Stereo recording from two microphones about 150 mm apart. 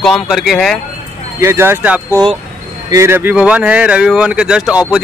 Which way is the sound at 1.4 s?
15° right (ahead or behind).